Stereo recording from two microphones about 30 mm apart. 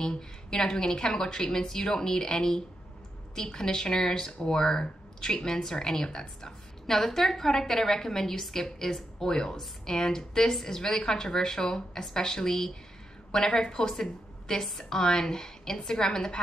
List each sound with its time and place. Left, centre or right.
0.0 s a woman's voice: left
6.9 s a woman's voice: centre